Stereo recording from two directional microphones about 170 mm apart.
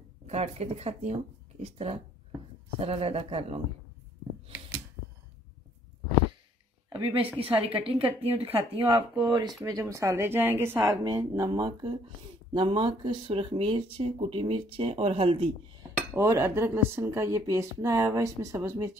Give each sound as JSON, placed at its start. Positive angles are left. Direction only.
{"t": 0.3, "sound": "speech", "side_deg": -40}
{"t": 7.5, "sound": "speech", "side_deg": -35}
{"t": 16.1, "sound": "speech", "side_deg": -15}